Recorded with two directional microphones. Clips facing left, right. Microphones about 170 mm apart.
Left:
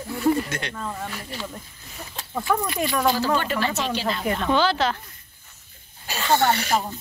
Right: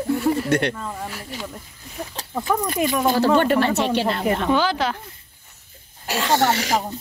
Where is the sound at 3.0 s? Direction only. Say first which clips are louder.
Right 6 dB; 50° right (ahead or behind).